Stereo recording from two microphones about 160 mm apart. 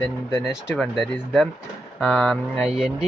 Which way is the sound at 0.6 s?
5° left (ahead or behind).